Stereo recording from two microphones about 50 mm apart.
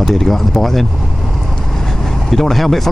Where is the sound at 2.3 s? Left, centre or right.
Centre.